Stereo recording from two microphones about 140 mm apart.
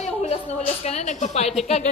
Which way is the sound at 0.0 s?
50° left (ahead or behind).